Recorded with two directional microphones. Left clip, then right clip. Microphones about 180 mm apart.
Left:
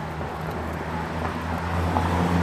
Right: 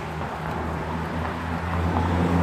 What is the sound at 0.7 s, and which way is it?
Vehicle, 55° left (ahead or behind).